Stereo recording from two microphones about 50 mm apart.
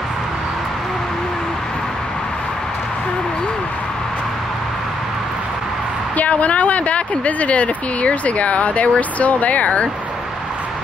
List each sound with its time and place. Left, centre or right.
6.1 s speech: left